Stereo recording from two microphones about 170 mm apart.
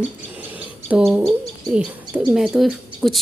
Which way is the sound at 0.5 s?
10° right (ahead or behind).